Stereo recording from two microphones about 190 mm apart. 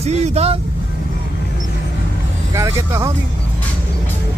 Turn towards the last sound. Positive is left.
turn(degrees=-15)  # may be behind; listen again after turning